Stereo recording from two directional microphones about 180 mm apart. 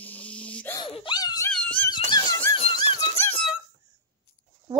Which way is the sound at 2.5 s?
30° left (ahead or behind).